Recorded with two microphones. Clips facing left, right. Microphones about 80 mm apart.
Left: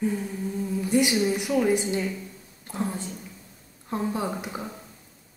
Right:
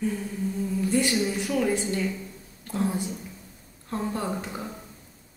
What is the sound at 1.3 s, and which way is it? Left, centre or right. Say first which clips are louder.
Speech: left 3 dB; centre.